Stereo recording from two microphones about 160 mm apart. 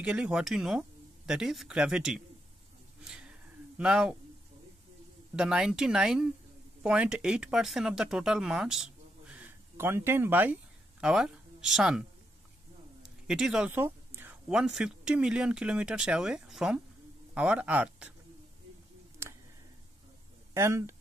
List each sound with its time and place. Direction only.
0.0 s speech: 5° right (ahead or behind)
3.0 s a sound: 5° right (ahead or behind)
5.3 s speech: 5° right (ahead or behind)
13.3 s speech: 5° right (ahead or behind)
20.5 s speech: 15° right (ahead or behind)